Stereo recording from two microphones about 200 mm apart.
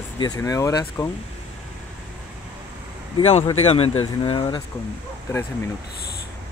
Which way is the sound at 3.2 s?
30° left (ahead or behind).